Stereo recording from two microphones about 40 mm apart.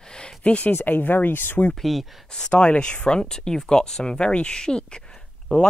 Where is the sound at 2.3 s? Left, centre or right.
Centre.